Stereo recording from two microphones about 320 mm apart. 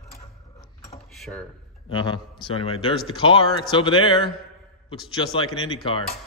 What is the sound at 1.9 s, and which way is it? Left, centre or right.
A man's voice, centre.